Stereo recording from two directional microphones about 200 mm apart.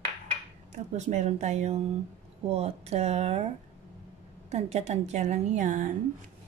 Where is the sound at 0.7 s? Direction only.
35° right (ahead or behind).